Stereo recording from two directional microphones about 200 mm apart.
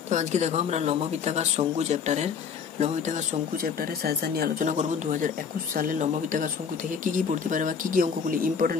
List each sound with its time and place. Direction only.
0.1 s speech: 35° right (ahead or behind)
3.6 s speech: 50° right (ahead or behind)